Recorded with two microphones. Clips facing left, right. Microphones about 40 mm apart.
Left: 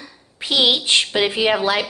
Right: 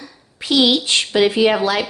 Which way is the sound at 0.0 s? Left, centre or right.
Left.